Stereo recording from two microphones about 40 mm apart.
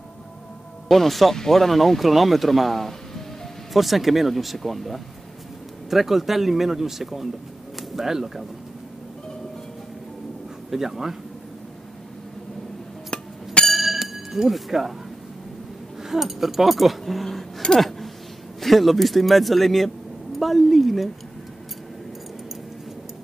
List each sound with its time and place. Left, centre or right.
0.8 s speech: centre
10.7 s speech: centre
13.1 s music: left
13.7 s glass: centre
14.5 s speech: centre
16.0 s speech: centre
17.7 s a sound: centre
18.6 s speech: centre